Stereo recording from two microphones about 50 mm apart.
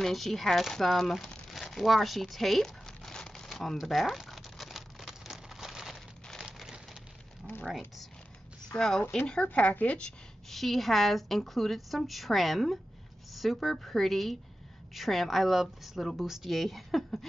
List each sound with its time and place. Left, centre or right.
0.0 s a woman's voice: centre
1.5 s crumpling: centre
3.4 s zipper: centre
3.8 s a woman's voice: centre
4.3 s a sound: centre
6.4 s a sound: centre
8.7 s speech: centre
9.3 s speech: left
10.5 s a woman's voice: centre